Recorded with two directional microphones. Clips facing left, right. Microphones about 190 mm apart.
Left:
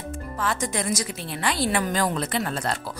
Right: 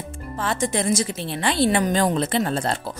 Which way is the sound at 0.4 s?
25° right (ahead or behind).